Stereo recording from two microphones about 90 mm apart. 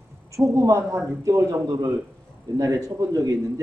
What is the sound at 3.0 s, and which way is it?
Speech, 40° right (ahead or behind).